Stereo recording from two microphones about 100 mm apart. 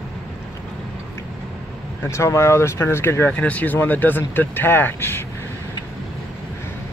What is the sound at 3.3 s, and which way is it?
Speech, 15° left (ahead or behind).